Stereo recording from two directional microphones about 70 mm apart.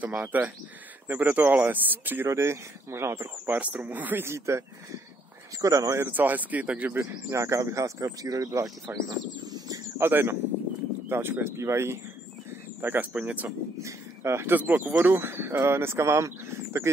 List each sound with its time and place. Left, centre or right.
0.3 s speech: right
2.2 s speech: right
3.5 s speech: right
4.3 s speech: right
5.6 s speech: right
5.9 s speech: right
7.0 s speech: right
9.9 s speech: right
12.8 s speech: right
13.1 s speech: centre
13.7 s speech: right
14.5 s speech: right